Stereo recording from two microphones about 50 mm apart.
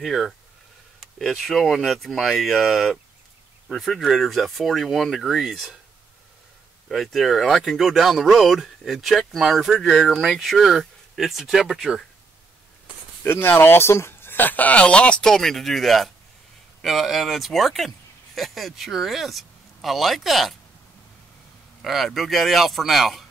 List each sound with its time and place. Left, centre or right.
0.0 s speech: centre
1.3 s speech: centre
6.9 s speech: centre
13.2 s speech: left
14.4 s speech: left
14.8 s speech: left
15.2 s speech: centre
21.8 s speech: centre